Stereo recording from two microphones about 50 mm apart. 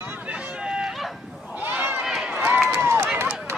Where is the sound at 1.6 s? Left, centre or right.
Right.